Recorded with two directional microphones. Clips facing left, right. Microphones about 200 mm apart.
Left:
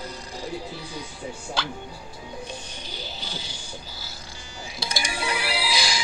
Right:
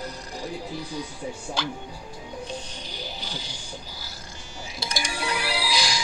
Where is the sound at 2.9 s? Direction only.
15° right (ahead or behind).